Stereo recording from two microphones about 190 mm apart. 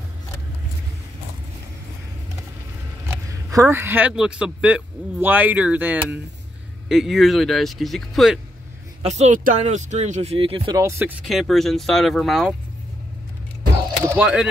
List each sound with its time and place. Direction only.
3.5 s speech: 15° right (ahead or behind)
9.0 s speech: 35° right (ahead or behind)
10.8 s speech: 15° right (ahead or behind)
11.2 s speech: centre (ahead or behind)
14.0 s speech: 10° right (ahead or behind)